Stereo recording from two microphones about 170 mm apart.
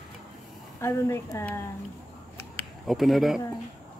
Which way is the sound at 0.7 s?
15° left (ahead or behind).